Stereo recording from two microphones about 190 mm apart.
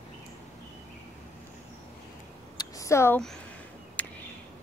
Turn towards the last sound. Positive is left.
turn(degrees=10)  # may be behind; listen again after turning